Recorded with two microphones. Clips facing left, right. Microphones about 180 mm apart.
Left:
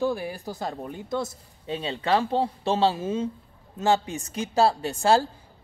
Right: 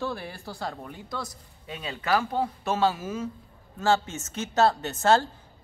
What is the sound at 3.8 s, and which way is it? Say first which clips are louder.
Speech: left 1 dB; 15° left (ahead or behind).